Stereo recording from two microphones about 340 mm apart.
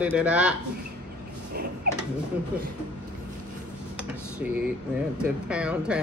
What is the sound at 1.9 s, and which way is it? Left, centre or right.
Speech, right.